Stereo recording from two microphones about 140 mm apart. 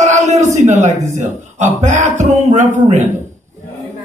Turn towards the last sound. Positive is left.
turn(degrees=-55)  # may be behind; listen again after turning